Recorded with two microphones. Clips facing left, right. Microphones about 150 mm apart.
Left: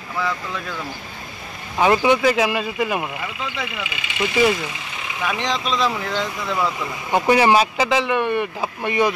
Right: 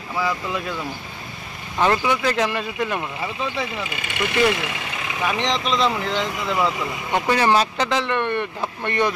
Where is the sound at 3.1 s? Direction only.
30° right (ahead or behind); by 4.4 s 50° right (ahead or behind).